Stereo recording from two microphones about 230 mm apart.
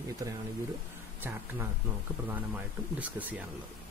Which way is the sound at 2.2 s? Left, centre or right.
Centre.